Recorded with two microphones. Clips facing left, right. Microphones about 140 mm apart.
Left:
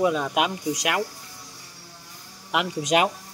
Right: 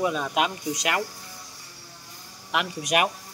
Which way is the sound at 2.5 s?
20° left (ahead or behind).